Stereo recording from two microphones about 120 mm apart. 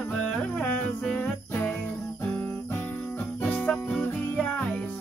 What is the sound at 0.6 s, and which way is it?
Music, 10° left (ahead or behind).